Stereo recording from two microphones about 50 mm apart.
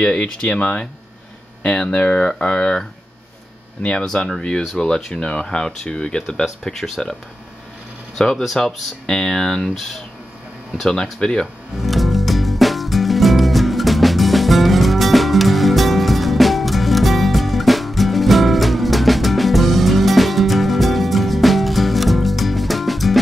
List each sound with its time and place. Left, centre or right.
0.0 s speech: left
4.0 s speech: centre
8.2 s speech: centre
10.9 s speech: centre
11.8 s music: centre